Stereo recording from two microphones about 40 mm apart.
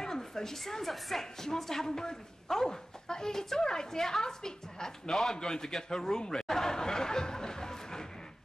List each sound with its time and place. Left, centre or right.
0.0 s a woman's voice: centre